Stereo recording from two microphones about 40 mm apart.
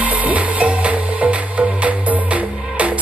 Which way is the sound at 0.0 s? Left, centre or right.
Right.